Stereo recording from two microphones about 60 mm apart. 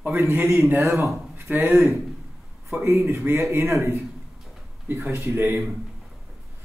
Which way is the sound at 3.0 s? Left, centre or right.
Right.